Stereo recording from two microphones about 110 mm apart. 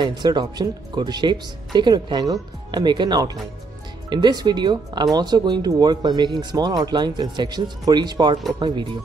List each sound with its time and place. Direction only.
0.0 s speech: 40° right (ahead or behind)